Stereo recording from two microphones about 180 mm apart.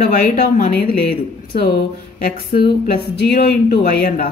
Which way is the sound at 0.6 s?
60° left (ahead or behind).